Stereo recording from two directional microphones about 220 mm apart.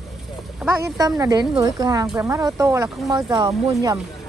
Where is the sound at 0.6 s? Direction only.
5° right (ahead or behind).